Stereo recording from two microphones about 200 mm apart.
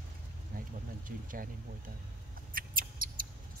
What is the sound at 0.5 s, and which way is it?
Speech, 45° right (ahead or behind).